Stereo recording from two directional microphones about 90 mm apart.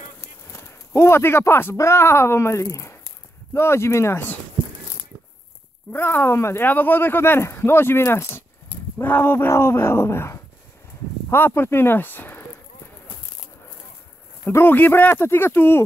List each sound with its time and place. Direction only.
0.2 s speech: 35° left (ahead or behind)
5.9 s speech: 20° left (ahead or behind)
14.4 s speech: 25° left (ahead or behind)